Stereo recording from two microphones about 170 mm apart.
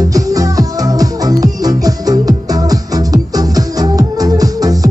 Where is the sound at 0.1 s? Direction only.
20° right (ahead or behind).